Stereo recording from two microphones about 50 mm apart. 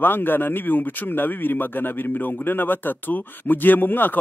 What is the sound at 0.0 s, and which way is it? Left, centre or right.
Speech, left.